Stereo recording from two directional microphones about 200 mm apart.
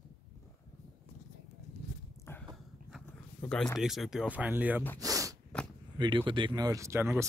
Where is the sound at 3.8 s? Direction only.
Centre (ahead or behind).